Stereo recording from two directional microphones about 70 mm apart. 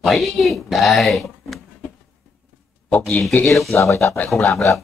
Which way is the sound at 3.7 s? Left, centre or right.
Left.